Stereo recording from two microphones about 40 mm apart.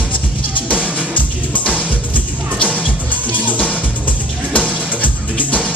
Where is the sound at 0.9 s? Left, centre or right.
Left.